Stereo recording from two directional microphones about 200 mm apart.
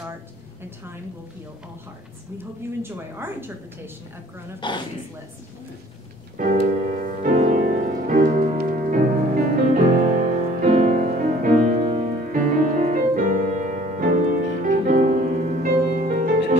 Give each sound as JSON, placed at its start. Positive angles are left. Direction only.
{"t": 2.3, "sound": "a woman's voice", "side_deg": -10}
{"t": 4.6, "sound": "speech", "side_deg": 25}
{"t": 6.3, "sound": "music", "side_deg": -40}